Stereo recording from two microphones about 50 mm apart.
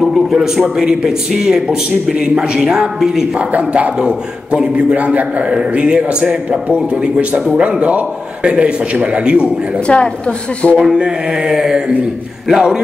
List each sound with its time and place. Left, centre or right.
0.1 s a man's voice: centre
3.3 s a man's voice: right
4.0 s a man's voice: centre
8.5 s a man's voice: right
9.8 s a woman's voice: left
11.0 s a man's voice: centre